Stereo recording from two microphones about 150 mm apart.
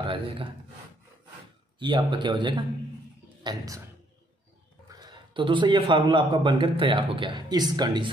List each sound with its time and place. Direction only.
0.0 s speech: 35° right (ahead or behind)
1.8 s a man's voice: 30° right (ahead or behind)
4.8 s a man's voice: 30° right (ahead or behind)